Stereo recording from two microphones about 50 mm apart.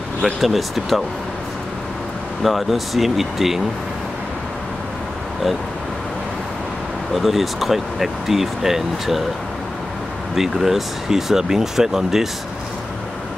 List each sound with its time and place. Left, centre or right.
0.2 s speech: centre
2.4 s speech: centre
7.2 s speech: centre
10.3 s speech: centre